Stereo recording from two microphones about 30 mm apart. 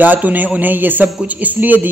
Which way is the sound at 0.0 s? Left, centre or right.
Right.